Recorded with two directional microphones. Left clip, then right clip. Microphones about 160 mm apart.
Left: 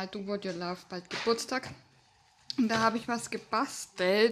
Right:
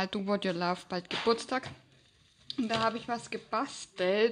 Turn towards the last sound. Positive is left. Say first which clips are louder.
# left 2 dB
turn(degrees=5)  # may be behind; listen again after turning